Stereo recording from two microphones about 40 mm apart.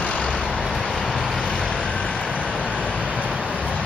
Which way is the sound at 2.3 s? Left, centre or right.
Right.